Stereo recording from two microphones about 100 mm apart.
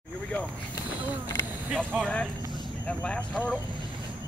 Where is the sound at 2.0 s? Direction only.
5° left (ahead or behind).